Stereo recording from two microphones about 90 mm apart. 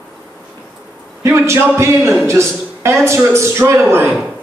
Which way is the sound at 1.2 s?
30° right (ahead or behind).